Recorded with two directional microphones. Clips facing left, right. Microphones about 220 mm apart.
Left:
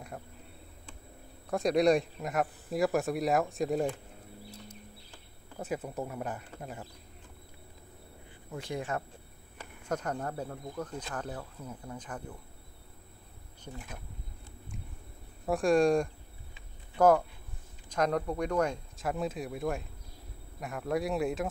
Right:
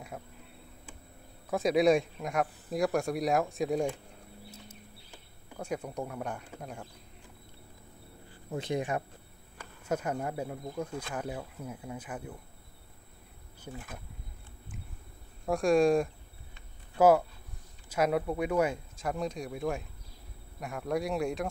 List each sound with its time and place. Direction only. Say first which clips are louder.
1.5 s speech: right 1 dB; centre (ahead or behind)
5.6 s speech: even; 5° left (ahead or behind)
8.5 s speech: right 4 dB; 20° right (ahead or behind)
15.4 s speech: right 1 dB; centre (ahead or behind)
16.5 s a sound: right 1 dB; 5° right (ahead or behind)
17.8 s speech: right 1 dB; 5° right (ahead or behind)